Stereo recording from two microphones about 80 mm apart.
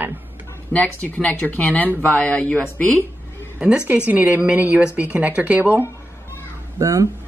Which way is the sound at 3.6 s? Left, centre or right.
Centre.